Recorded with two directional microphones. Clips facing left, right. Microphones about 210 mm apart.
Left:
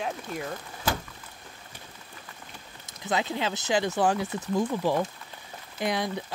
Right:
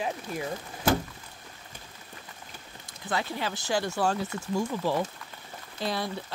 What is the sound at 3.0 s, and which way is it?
Speech, 20° left (ahead or behind).